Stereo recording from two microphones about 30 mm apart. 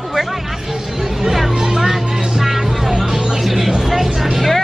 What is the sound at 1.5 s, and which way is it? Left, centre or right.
Music, centre.